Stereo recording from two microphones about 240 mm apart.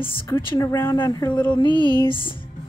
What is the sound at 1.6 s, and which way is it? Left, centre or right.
Music, centre.